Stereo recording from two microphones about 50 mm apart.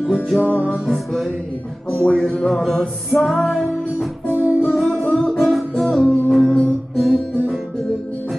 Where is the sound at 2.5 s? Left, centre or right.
Centre.